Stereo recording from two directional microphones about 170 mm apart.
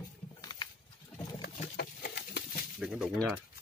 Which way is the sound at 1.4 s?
80° left.